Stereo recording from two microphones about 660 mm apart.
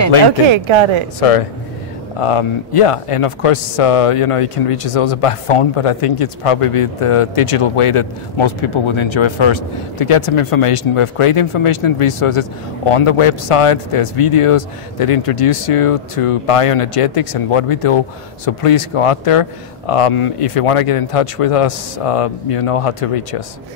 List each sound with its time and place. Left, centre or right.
0.5 s speech: right
2.1 s speech: left